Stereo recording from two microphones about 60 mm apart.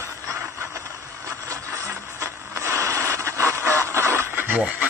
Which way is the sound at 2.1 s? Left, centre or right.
Right.